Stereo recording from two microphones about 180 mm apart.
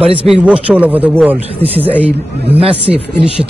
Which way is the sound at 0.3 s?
5° right (ahead or behind).